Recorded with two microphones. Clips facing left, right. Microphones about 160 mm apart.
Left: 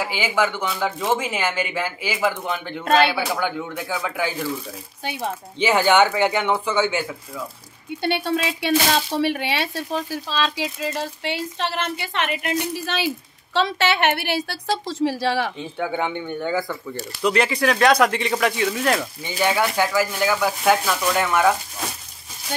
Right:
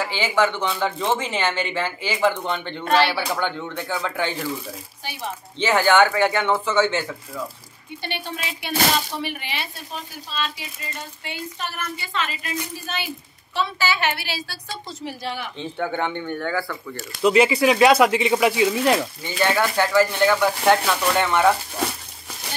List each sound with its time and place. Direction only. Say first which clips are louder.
0.0 s speech: right 1 dB; 10° left (ahead or behind)
5.6 s speech: even; 15° left (ahead or behind)
8.2 s speech: left 8 dB; 80° left
11.7 s a woman's voice: left 4 dB; 70° left (ahead or behind); by 15.5 s 90° left
15.6 s speech: even; 10° left (ahead or behind)
17.1 s speech: right 4 dB; 5° right (ahead or behind)
19.2 s speech: left 2 dB; 15° left (ahead or behind)